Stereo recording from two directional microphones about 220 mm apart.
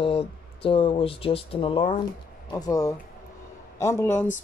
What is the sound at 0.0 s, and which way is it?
Speech, 25° left (ahead or behind).